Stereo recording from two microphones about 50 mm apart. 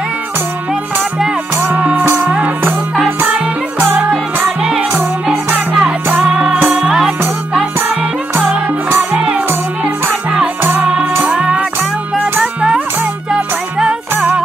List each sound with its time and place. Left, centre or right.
1.6 s music: right
3.8 s music: centre
4.9 s music: right
6.2 s music: centre
10.8 s music: centre
13.3 s music: centre